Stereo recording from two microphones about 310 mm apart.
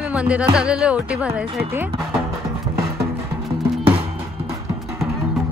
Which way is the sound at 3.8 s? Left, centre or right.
Centre.